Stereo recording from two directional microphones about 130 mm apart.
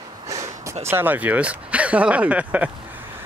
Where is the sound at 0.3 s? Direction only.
25° right (ahead or behind).